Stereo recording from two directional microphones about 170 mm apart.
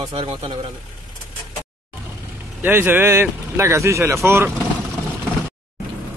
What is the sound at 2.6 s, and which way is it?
Speech, 10° right (ahead or behind).